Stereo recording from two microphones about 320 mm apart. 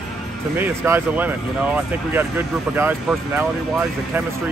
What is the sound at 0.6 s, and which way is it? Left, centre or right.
Speech, centre.